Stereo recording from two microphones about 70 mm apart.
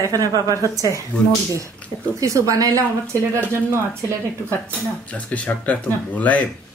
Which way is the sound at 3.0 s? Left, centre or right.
Right.